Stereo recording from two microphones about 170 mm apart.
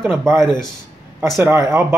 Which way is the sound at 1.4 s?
15° right (ahead or behind).